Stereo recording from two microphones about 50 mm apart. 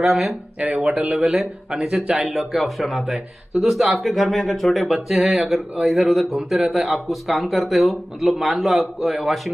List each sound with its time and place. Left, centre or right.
0.0 s speech: centre
0.6 s speech: right
1.8 s speech: centre